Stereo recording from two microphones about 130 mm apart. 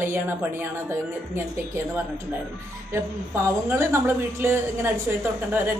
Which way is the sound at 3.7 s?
20° right (ahead or behind).